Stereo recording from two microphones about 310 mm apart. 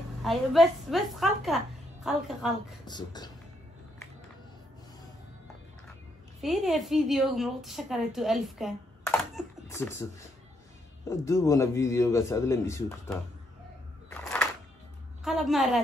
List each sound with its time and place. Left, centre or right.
0.2 s a woman's voice: centre
2.8 s a man's voice: centre
6.4 s a woman's voice: centre
14.1 s music: centre
15.2 s a woman's voice: centre